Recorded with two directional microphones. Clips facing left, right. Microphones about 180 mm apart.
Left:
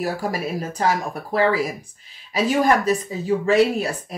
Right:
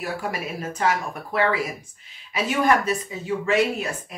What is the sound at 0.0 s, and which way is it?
Speech, 35° left (ahead or behind).